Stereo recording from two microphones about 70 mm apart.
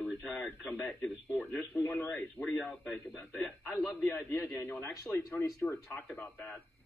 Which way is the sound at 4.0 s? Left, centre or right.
Left.